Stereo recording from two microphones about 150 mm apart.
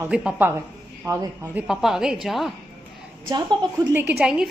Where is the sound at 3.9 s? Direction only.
10° right (ahead or behind).